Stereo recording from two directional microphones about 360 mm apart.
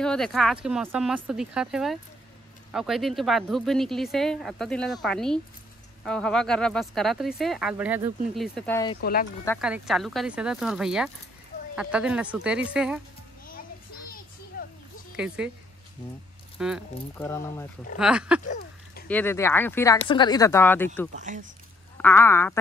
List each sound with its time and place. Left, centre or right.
0.0 s speech: centre
9.0 s speech: left
9.4 s speech: centre
15.1 s speech: centre
16.5 s speech: centre
18.4 s a sound: left
19.0 s speech: centre
21.2 s speech: right
21.9 s speech: centre